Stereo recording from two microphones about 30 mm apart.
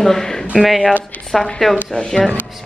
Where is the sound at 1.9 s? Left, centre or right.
Left.